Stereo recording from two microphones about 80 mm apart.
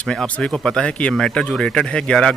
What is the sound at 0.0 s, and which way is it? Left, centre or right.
Speech, centre.